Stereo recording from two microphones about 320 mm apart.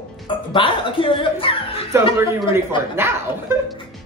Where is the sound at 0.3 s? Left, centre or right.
Centre.